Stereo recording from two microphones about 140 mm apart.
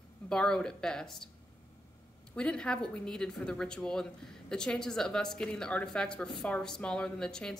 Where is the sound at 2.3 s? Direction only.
5° left (ahead or behind).